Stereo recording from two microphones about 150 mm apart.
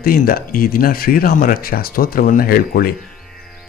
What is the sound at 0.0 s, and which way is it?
Speech, 80° left.